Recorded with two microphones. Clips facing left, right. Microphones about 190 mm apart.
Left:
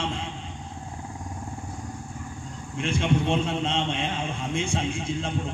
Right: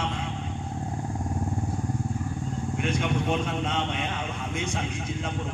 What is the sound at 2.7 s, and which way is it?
A man's voice, 25° left (ahead or behind).